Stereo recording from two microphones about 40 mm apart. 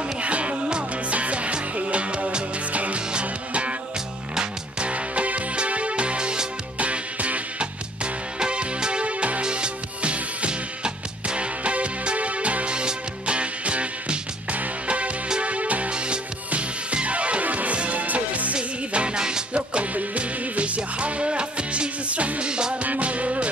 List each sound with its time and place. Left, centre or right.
0.2 s music: right
18.6 s music: right
22.8 s music: right